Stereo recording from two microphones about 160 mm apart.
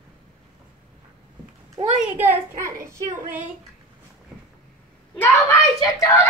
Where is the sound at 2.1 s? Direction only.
10° right (ahead or behind).